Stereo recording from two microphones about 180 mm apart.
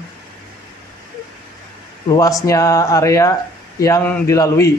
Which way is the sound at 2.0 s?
20° left (ahead or behind).